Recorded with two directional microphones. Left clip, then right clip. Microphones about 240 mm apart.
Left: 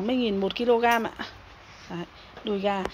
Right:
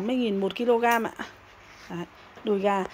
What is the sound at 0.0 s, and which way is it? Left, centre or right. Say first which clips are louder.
A woman's voice: left 1 dB; centre.